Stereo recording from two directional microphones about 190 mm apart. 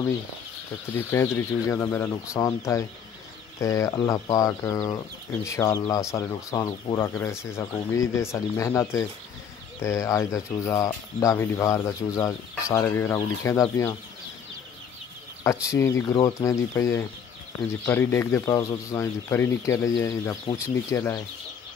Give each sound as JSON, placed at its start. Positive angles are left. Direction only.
{"t": 0.9, "sound": "speech", "side_deg": 15}
{"t": 15.6, "sound": "speech", "side_deg": 15}